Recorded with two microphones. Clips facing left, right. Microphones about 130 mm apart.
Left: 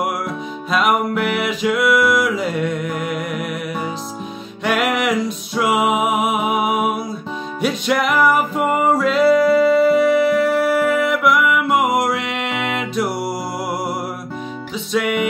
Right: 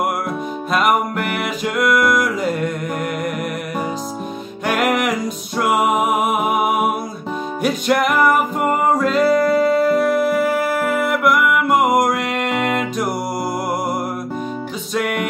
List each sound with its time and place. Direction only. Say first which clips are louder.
0.7 s music: even; centre (ahead or behind)
4.6 s music: even; centre (ahead or behind)
15.0 s music: left 2 dB; centre (ahead or behind)